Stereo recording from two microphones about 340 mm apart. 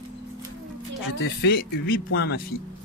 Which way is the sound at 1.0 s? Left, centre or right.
Left.